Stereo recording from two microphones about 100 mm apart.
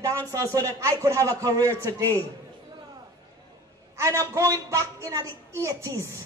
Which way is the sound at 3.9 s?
30° right (ahead or behind).